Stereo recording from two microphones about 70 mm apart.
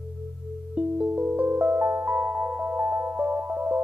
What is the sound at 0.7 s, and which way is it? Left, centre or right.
Music, centre.